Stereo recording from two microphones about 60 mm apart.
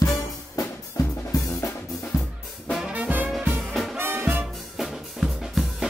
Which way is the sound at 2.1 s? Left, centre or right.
Left.